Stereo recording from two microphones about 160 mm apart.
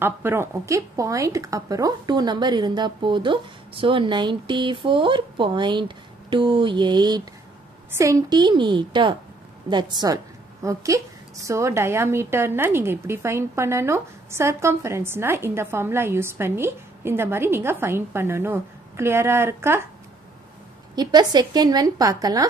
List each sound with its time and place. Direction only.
0.0 s a woman's voice: 15° right (ahead or behind)
20.9 s speech: 25° right (ahead or behind)